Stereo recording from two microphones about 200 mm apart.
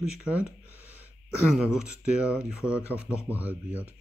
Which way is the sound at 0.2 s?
5° right (ahead or behind).